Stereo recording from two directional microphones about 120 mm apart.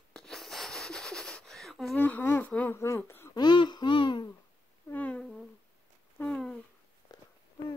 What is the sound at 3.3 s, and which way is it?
Babbling, 40° left (ahead or behind).